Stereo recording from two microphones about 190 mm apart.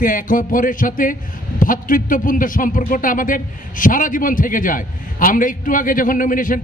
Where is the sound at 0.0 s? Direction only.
45° left (ahead or behind).